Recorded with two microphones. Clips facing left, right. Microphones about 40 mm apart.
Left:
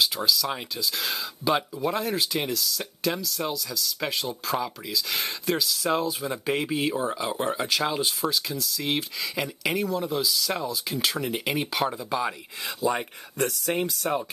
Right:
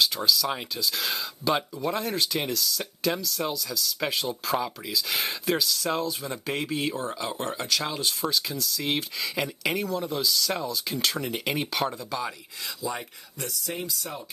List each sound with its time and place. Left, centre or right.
0.0 s speech: centre
8.2 s speech: centre
12.1 s speech: left
12.8 s speech: left